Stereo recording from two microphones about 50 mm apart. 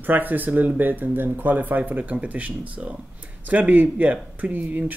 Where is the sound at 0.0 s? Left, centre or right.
Right.